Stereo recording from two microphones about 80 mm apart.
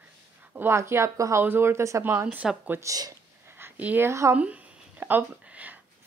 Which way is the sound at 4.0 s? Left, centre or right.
Right.